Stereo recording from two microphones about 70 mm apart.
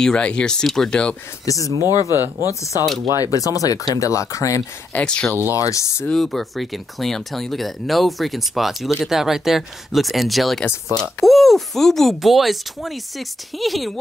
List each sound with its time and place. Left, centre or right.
0.0 s speech: centre
1.4 s speech: left
2.0 s speech: right
2.4 s speech: left
5.0 s speech: centre
5.6 s speech: left
6.0 s speech: centre
10.9 s speech: left
11.2 s speech: centre